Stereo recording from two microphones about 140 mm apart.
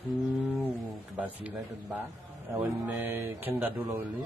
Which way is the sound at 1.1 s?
10° right (ahead or behind).